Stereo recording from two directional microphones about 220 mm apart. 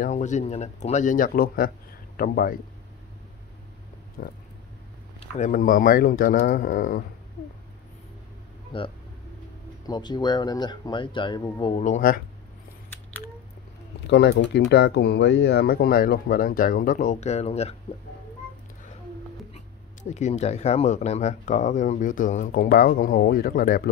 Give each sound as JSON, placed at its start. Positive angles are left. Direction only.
{"t": 0.0, "sound": "speech", "side_deg": 35}
{"t": 4.2, "sound": "speech", "side_deg": 45}
{"t": 5.2, "sound": "speech", "side_deg": 30}
{"t": 8.7, "sound": "speech", "side_deg": 20}
{"t": 14.0, "sound": "speech", "side_deg": 50}
{"t": 19.5, "sound": "speech", "side_deg": 30}